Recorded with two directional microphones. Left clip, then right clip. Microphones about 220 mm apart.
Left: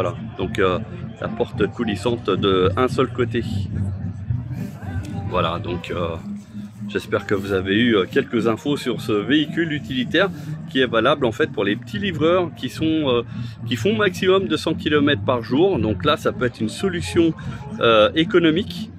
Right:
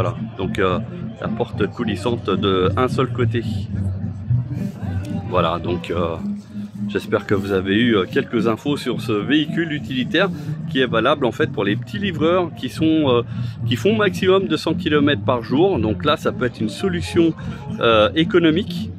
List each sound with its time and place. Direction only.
0.0 s speech: centre (ahead or behind)
5.3 s speech: 10° right (ahead or behind)